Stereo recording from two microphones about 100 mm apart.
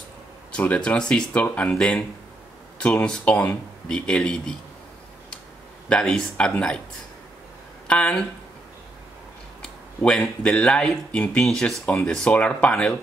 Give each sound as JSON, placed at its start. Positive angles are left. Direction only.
{"t": 0.6, "sound": "speech", "side_deg": 10}
{"t": 5.9, "sound": "speech", "side_deg": 10}
{"t": 7.9, "sound": "speech", "side_deg": 10}
{"t": 9.6, "sound": "speech", "side_deg": 5}